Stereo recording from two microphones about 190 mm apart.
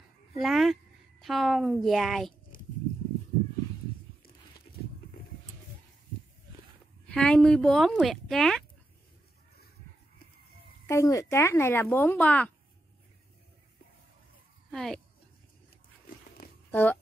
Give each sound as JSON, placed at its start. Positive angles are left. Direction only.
{"t": 0.4, "sound": "speech", "side_deg": 0}
{"t": 2.5, "sound": "a sound", "side_deg": 45}
{"t": 7.2, "sound": "speech", "side_deg": 5}
{"t": 10.9, "sound": "speech", "side_deg": 15}
{"t": 14.7, "sound": "speech", "side_deg": 0}
{"t": 16.4, "sound": "a sound", "side_deg": 50}
{"t": 16.7, "sound": "speech", "side_deg": 10}